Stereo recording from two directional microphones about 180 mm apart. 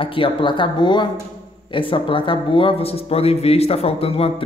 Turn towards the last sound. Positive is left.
turn(degrees=30)  # may be behind; listen again after turning